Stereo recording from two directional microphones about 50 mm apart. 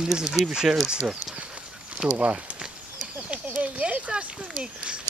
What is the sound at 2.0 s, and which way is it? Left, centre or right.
Speech, centre.